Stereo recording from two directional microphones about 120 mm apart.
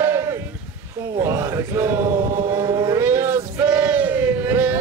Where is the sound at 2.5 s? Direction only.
35° right (ahead or behind).